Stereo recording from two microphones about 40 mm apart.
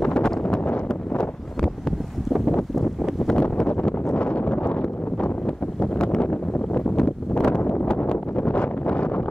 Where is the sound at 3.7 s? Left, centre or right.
Left.